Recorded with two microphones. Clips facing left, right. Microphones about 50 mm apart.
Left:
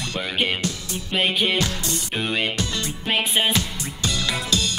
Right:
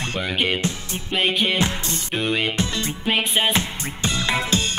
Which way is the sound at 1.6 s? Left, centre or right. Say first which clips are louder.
Right 2 dB; right.